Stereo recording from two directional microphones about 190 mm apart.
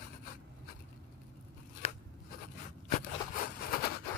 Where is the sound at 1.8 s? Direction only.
30° left (ahead or behind).